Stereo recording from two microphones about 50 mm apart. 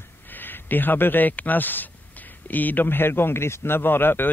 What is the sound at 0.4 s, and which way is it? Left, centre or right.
A man's voice, left.